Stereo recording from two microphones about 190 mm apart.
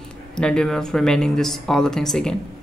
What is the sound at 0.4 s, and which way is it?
Speech, 5° left (ahead or behind).